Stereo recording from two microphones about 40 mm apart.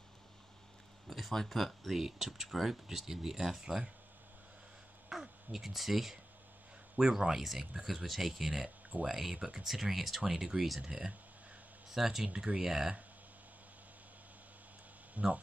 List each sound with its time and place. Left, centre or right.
1.0 s a sound: centre
1.3 s speech: centre
5.1 s speech: centre
10.8 s speech: centre
11.9 s speech: centre
15.1 s speech: right